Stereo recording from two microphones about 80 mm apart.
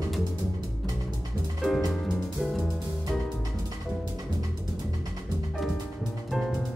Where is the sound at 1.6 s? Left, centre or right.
Centre.